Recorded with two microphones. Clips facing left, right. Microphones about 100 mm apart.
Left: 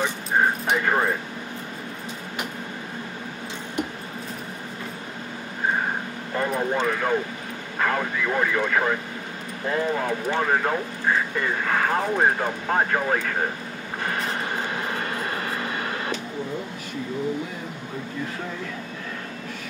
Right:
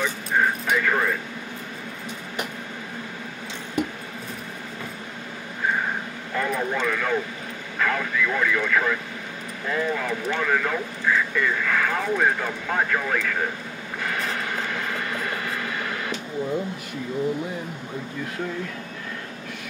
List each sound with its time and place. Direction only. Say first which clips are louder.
0.0 s dog: left 1 dB; 30° left (ahead or behind)
6.3 s speech: left 1 dB; 30° left (ahead or behind)
14.0 s vehicle: left 1 dB; 35° left (ahead or behind)